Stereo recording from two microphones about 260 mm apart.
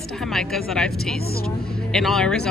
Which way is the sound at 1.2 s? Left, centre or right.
Left.